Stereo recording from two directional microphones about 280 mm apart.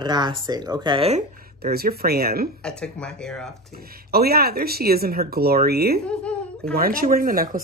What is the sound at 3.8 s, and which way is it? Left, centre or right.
Speech, right.